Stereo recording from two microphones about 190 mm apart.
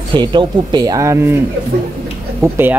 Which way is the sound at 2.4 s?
10° right (ahead or behind).